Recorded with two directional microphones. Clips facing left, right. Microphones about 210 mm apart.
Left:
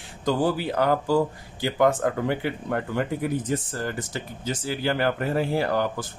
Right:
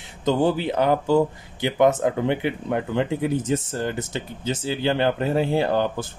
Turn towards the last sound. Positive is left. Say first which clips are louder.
# right 3 dB
turn(degrees=-25)  # may be behind; listen again after turning